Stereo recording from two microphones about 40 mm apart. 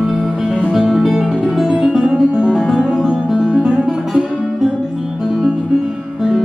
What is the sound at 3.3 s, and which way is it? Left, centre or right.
Music, right.